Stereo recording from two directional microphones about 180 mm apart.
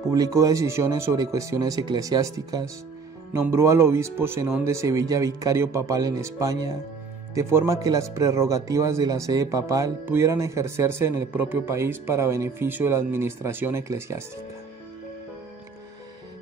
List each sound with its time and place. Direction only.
0.1 s speech: 20° right (ahead or behind)